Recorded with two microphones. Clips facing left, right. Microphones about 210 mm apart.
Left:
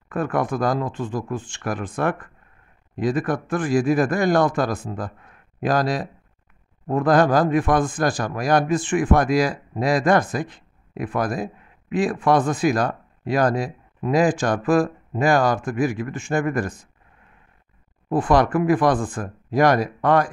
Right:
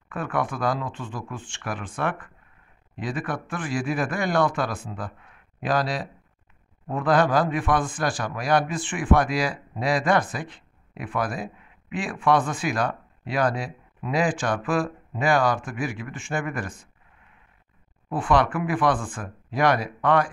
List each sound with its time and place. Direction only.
0.1 s a man's voice: 40° left (ahead or behind)
18.1 s speech: 40° left (ahead or behind)